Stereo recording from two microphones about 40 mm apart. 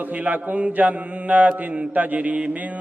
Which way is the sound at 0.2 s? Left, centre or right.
Right.